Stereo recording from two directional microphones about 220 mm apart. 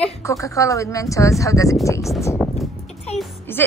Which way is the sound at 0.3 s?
15° left (ahead or behind).